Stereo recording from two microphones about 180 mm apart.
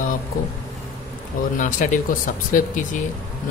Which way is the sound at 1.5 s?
45° left (ahead or behind).